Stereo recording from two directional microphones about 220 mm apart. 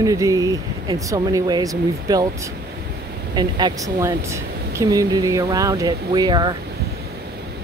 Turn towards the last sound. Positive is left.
turn(degrees=-20)  # may be behind; listen again after turning